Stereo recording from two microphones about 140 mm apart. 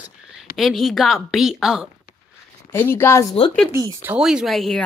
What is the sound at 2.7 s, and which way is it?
Speech, 15° left (ahead or behind).